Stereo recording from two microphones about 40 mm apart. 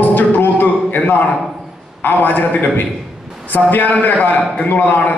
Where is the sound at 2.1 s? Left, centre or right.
Left.